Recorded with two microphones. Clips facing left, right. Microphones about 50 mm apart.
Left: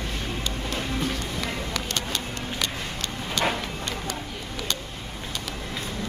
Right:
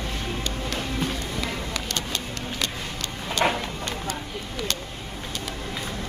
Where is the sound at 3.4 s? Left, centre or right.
Centre.